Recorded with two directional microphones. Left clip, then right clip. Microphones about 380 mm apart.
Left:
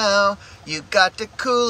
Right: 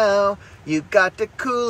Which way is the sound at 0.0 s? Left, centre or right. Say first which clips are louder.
Even; centre.